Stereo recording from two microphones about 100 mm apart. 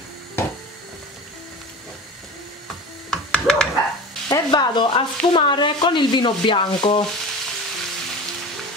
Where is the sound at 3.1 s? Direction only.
5° left (ahead or behind).